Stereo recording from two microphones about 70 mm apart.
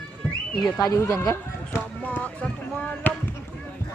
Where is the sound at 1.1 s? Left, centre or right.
Left.